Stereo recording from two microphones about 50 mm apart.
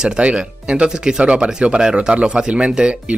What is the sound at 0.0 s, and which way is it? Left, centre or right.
Speech, centre.